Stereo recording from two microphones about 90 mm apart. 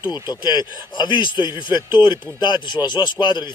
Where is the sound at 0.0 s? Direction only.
55° left (ahead or behind).